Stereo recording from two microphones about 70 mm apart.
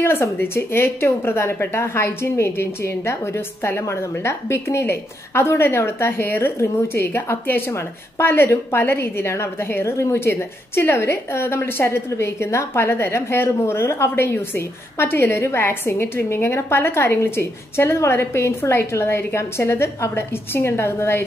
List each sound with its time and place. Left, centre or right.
0.0 s a woman's voice: left